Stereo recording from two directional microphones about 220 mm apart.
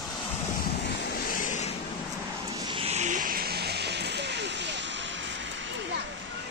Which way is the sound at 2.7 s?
30° right (ahead or behind).